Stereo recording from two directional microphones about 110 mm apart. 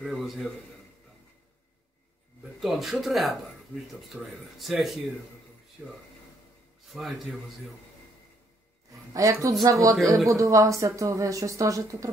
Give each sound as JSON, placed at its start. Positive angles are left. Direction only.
{"t": 0.0, "sound": "speech", "side_deg": 0}
{"t": 2.6, "sound": "speech", "side_deg": 0}
{"t": 6.9, "sound": "speech", "side_deg": 0}
{"t": 9.1, "sound": "speech", "side_deg": -30}